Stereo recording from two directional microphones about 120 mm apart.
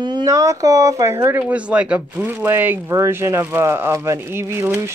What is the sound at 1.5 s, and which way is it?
Speech, 10° right (ahead or behind).